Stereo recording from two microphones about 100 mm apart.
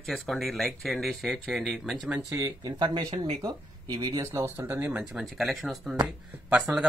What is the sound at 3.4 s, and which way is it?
Speech, 45° right (ahead or behind).